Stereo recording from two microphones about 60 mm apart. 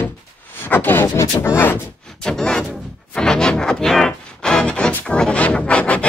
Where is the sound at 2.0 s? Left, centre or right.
Centre.